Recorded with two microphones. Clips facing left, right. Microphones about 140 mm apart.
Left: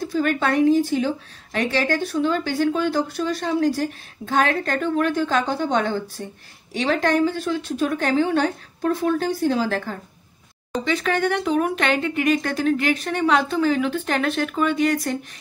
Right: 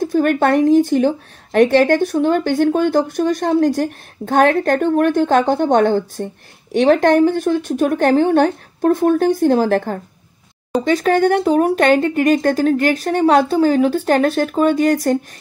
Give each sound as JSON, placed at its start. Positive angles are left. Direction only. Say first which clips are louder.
{"t": 0.0, "sound": "speech", "louder": "right 7 dB", "side_deg": -50}
{"t": 10.8, "sound": "speech", "louder": "right 7 dB", "side_deg": -40}